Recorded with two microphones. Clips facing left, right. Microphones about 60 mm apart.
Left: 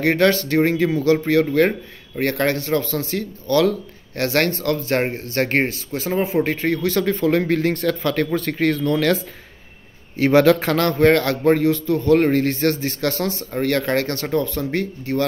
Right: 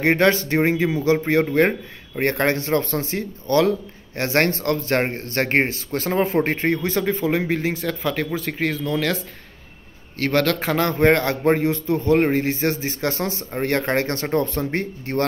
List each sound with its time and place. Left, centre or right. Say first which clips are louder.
0.0 s speech: left 1 dB; right
5.9 s speech: even; right
6.4 s speech: left 1 dB; right; by 9.2 s centre
10.1 s a man's voice: left 6 dB; centre
10.7 s speech: left 2 dB; centre; by 15.2 s right